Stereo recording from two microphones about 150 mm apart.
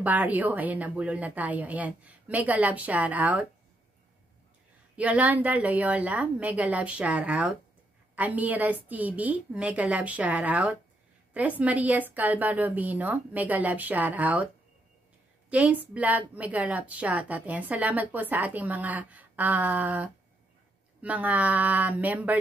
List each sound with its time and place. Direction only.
0.0 s a woman's voice: 10° right (ahead or behind)
4.9 s a woman's voice: 10° right (ahead or behind)
15.5 s a woman's voice: 10° right (ahead or behind)